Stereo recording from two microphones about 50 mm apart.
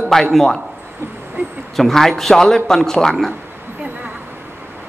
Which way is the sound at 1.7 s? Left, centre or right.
Centre.